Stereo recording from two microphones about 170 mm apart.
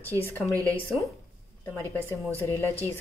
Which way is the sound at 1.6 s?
10° left (ahead or behind).